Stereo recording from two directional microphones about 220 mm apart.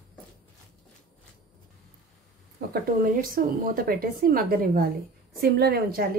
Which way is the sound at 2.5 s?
40° right (ahead or behind).